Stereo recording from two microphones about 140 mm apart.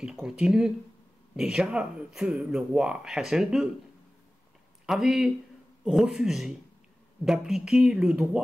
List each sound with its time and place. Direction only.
0.0 s speech: 5° right (ahead or behind)
4.8 s speech: centre (ahead or behind)